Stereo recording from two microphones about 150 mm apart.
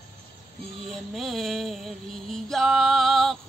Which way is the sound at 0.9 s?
Centre (ahead or behind).